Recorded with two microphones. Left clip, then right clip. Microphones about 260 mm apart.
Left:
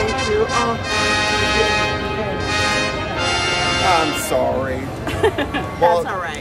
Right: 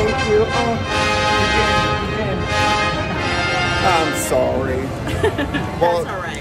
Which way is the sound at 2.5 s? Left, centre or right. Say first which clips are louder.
Right 2 dB; centre.